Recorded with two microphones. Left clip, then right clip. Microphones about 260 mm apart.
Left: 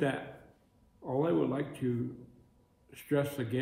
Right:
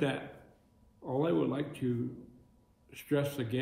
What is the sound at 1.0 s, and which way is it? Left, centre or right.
A man's voice, centre.